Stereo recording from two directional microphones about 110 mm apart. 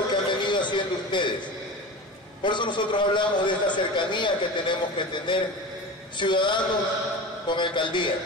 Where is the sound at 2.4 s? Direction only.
45° left (ahead or behind).